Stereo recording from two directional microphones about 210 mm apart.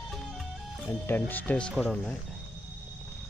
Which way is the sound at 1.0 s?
10° left (ahead or behind).